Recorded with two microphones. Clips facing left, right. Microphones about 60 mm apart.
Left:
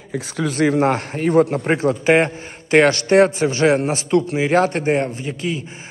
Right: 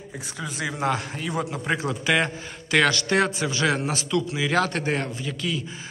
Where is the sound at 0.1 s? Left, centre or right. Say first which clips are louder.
Left 12 dB; left.